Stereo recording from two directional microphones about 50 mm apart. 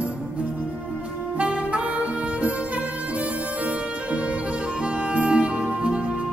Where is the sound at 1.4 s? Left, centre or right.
Right.